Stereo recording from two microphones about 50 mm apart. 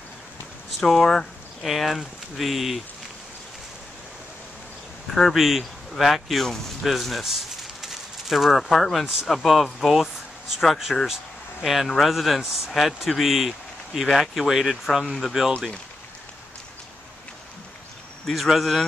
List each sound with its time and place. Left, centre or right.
0.7 s speech: centre
5.1 s a man's voice: centre
18.2 s a man's voice: centre